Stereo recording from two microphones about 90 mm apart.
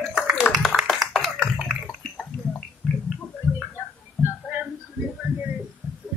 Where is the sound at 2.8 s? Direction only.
Centre (ahead or behind).